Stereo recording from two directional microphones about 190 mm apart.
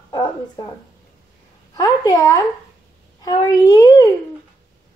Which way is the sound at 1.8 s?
20° left (ahead or behind).